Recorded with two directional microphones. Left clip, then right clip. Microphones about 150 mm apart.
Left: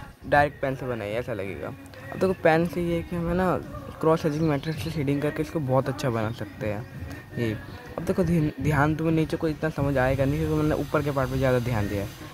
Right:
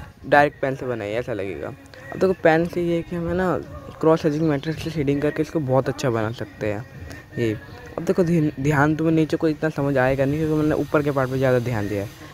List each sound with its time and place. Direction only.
0.3 s speech: 45° right (ahead or behind); by 12.1 s 25° right (ahead or behind)